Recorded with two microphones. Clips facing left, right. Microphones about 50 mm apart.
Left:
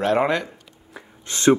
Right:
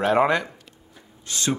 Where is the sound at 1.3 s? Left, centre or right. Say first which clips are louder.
Left 9 dB; left.